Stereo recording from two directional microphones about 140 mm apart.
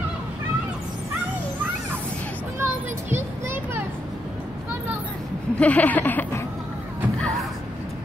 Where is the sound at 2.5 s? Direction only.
15° right (ahead or behind).